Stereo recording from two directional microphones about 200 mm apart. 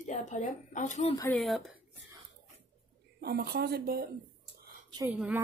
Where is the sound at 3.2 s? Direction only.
50° right (ahead or behind).